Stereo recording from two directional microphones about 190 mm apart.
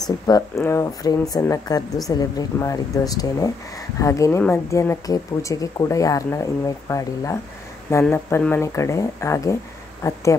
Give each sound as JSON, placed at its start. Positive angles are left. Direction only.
{"t": 0.0, "sound": "speech", "side_deg": 15}